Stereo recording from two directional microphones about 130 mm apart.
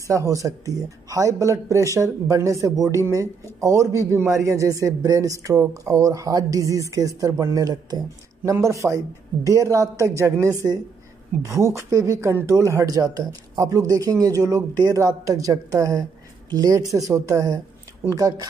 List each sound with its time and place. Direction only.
0.0 s a man's voice: 25° right (ahead or behind)